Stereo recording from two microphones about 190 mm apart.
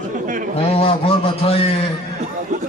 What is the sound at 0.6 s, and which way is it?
Speech, 30° left (ahead or behind).